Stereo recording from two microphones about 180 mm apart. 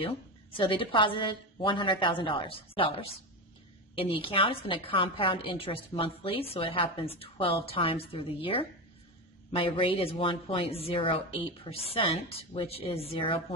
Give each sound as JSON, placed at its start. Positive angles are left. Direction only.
{"t": 0.0, "sound": "a woman's voice", "side_deg": 30}
{"t": 3.9, "sound": "a woman's voice", "side_deg": 30}